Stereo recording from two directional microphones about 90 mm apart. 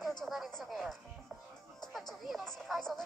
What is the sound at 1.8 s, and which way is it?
Music, centre (ahead or behind).